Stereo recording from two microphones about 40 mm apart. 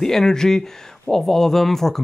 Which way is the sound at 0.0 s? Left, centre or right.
Centre.